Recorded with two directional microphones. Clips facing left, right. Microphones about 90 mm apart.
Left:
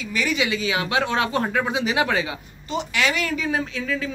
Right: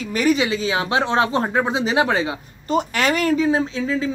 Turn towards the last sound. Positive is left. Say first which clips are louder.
# right 5 dB
turn(degrees=-25)  # may be behind; listen again after turning